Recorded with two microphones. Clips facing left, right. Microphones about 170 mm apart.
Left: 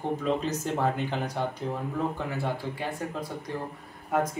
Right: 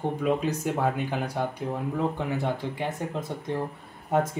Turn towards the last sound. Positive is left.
turn(degrees=-25)  # may be behind; listen again after turning